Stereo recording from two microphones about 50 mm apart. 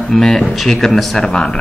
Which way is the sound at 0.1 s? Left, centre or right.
Centre.